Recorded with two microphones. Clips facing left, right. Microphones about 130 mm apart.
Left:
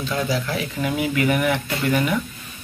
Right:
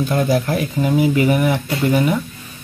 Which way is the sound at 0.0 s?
50° right (ahead or behind).